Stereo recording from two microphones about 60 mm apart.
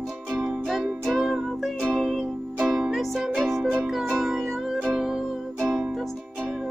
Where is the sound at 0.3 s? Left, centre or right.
Centre.